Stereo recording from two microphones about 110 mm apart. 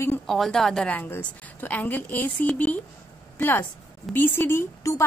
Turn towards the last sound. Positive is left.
turn(degrees=25)  # may be behind; listen again after turning